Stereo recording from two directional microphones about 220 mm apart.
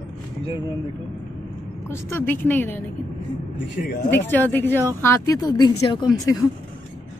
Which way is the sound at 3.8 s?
40° left (ahead or behind).